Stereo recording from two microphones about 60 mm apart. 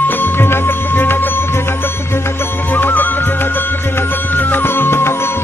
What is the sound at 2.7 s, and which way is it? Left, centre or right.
Music, left.